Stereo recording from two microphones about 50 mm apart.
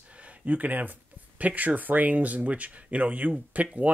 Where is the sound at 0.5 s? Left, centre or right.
Right.